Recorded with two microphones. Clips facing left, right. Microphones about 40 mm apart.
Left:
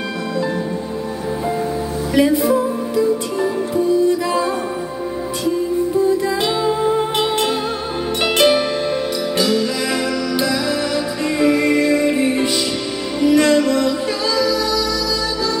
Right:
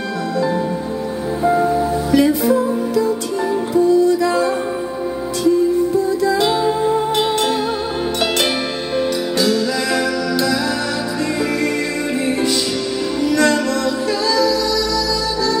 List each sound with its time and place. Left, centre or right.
2.1 s music: centre
9.4 s music: centre